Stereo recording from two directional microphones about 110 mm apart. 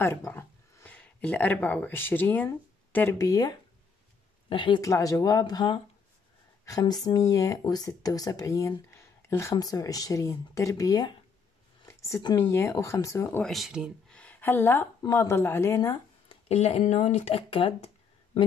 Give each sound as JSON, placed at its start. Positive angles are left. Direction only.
{"t": 0.0, "sound": "speech", "side_deg": 20}
{"t": 3.2, "sound": "speech", "side_deg": 35}
{"t": 4.5, "sound": "speech", "side_deg": 50}
{"t": 4.8, "sound": "speech", "side_deg": 30}
{"t": 12.4, "sound": "speech", "side_deg": 25}
{"t": 13.4, "sound": "speech", "side_deg": 0}
{"t": 14.0, "sound": "a woman's voice", "side_deg": 10}
{"t": 16.3, "sound": "speech", "side_deg": 75}